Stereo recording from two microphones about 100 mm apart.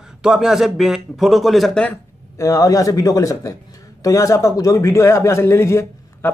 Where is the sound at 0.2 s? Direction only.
5° right (ahead or behind).